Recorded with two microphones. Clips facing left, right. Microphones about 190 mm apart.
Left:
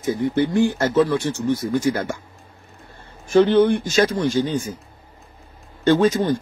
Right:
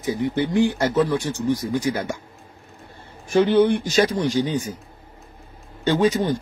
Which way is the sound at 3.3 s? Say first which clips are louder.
Left 2 dB; 10° right (ahead or behind).